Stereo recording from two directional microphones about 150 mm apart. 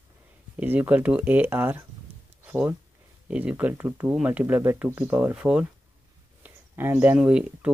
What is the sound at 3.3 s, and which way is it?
Speech, 10° right (ahead or behind).